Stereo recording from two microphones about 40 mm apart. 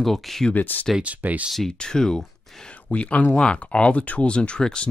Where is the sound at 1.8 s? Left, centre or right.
Centre.